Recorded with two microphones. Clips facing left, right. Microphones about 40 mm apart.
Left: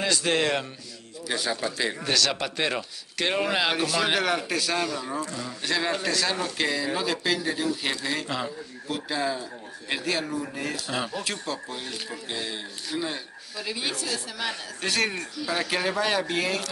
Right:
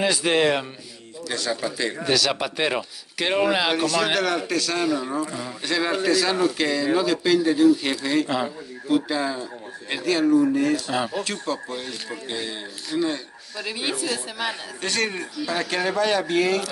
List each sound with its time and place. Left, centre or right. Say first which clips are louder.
0.0 s a woman's voice: right 4 dB; centre
1.3 s a man's voice: right 2 dB; centre
2.0 s speech: right 6 dB; centre
4.8 s a woman's voice: right 6 dB; centre
5.7 s speech: right 5 dB; centre
13.6 s a woman's voice: right 3 dB; centre
14.8 s speech: right 1 dB; centre